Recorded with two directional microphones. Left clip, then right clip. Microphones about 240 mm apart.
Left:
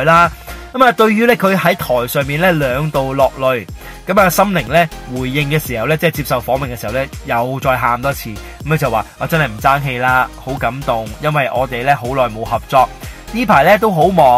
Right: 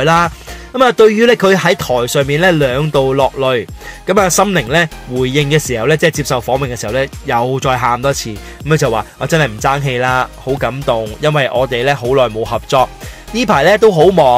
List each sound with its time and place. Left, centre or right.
0.0 s speech: right